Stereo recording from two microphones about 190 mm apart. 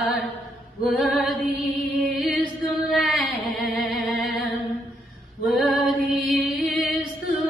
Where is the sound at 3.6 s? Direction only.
55° left (ahead or behind).